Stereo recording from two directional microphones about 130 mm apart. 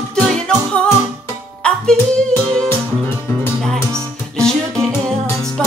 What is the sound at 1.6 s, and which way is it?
Music, 5° left (ahead or behind).